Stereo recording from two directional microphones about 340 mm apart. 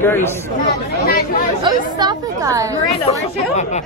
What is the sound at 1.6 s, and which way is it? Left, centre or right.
Speech, centre.